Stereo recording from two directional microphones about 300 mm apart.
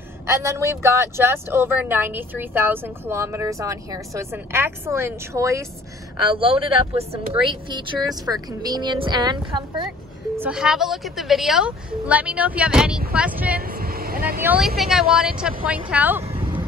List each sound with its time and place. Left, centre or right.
0.3 s speech: centre
10.4 s a woman's voice: centre
13.6 s vehicle: right
14.4 s a woman's voice: centre
16.3 s vehicle: centre